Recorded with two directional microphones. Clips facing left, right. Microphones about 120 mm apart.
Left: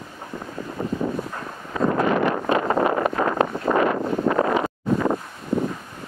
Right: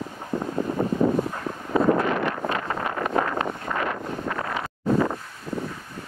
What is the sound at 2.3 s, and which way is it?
Wind noise, 20° left (ahead or behind).